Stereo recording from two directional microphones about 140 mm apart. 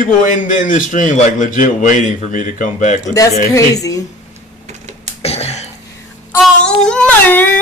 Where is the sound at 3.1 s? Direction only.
25° left (ahead or behind).